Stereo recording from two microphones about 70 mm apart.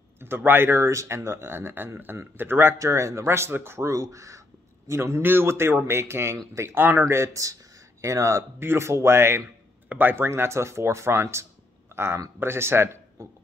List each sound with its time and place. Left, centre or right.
0.2 s a man's voice: right
2.8 s a man's voice: right
3.9 s a man's voice: right
6.8 s speech: right
7.1 s speech: right
8.5 s a man's voice: right
11.9 s a sound: right
12.4 s speech: right